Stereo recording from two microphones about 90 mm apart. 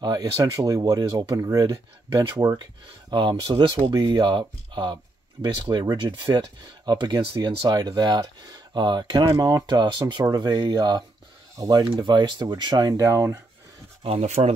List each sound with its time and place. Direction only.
0.0 s speech: 45° right (ahead or behind)
2.6 s speech: 55° right (ahead or behind)
13.0 s speech: 35° right (ahead or behind)